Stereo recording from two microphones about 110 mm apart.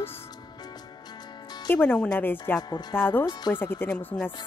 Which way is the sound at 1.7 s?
20° left (ahead or behind).